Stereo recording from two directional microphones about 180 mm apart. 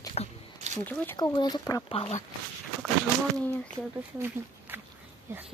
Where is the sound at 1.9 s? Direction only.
35° left (ahead or behind).